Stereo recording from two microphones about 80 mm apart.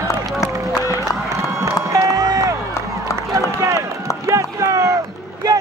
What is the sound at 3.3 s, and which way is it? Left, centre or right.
Run, right.